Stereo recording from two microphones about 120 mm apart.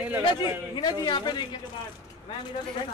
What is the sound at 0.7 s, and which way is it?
Speech, 40° left (ahead or behind).